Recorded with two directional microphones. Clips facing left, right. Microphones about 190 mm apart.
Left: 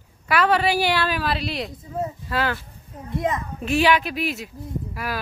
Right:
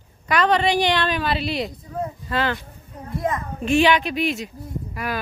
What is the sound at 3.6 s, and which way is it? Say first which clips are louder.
Speech: right 2 dB; 5° left (ahead or behind).